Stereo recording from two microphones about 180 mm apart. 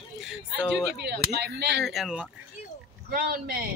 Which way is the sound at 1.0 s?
65° right (ahead or behind).